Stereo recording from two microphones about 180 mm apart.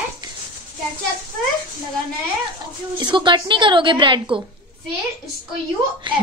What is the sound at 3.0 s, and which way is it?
A woman's voice, 25° right (ahead or behind).